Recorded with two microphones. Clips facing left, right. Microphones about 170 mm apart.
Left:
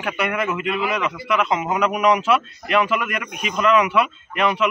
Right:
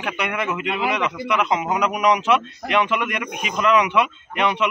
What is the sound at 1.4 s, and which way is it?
A man's voice, 15° right (ahead or behind).